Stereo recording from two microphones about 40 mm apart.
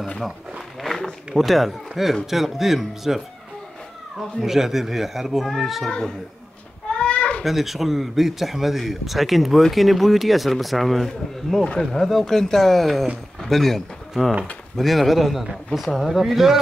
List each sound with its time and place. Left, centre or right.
0.2 s a sound: centre
1.3 s a man's voice: centre
4.2 s a man's voice: centre
5.9 s speech: left
6.9 s a sound: left
7.4 s a man's voice: centre